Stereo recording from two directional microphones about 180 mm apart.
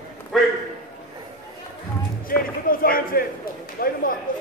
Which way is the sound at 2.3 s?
55° left (ahead or behind).